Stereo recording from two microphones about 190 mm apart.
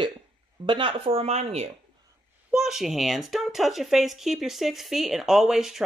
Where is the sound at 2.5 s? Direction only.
Centre (ahead or behind).